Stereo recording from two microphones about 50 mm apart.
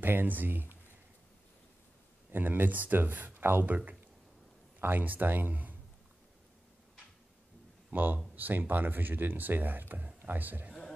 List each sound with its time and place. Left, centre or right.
0.0 s speech: right
2.3 s speech: right
3.6 s speech: right
7.9 s speech: right